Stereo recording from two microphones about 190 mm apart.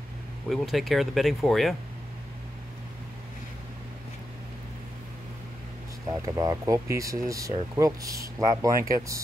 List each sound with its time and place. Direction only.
0.5 s speech: centre (ahead or behind)
6.0 s speech: 15° right (ahead or behind)